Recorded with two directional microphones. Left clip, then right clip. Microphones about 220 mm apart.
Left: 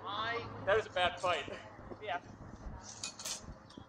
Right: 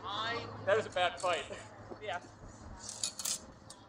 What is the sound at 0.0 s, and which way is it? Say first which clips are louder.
Vehicle: even; 50° right (ahead or behind).